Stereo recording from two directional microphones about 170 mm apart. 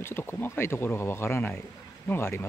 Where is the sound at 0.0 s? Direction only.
15° left (ahead or behind).